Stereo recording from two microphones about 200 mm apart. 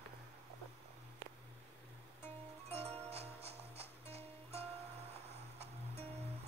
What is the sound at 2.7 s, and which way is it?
Music, 30° right (ahead or behind).